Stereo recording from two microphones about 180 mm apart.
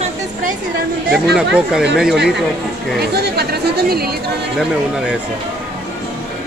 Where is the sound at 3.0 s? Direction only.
65° right (ahead or behind).